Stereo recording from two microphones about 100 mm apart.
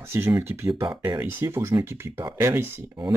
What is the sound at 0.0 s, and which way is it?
Speech, 25° right (ahead or behind).